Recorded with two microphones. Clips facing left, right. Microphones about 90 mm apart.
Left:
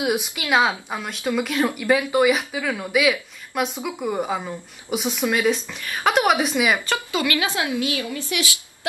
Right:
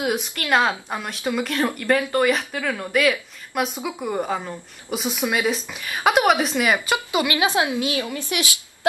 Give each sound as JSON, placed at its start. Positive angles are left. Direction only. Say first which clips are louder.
{"t": 0.0, "sound": "speech", "louder": "left 1 dB", "side_deg": 5}
{"t": 5.2, "sound": "speech", "louder": "left 2 dB", "side_deg": -10}
{"t": 6.9, "sound": "speech", "louder": "right 1 dB", "side_deg": -20}